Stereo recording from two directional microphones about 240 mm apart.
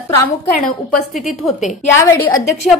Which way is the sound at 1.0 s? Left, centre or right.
Left.